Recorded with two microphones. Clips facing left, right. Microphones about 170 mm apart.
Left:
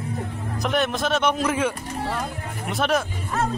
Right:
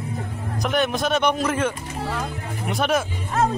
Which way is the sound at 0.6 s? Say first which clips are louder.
Right 1 dB; centre (ahead or behind).